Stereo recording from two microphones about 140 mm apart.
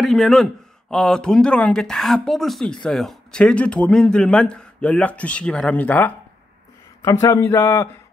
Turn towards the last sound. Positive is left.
turn(degrees=15)  # may be behind; listen again after turning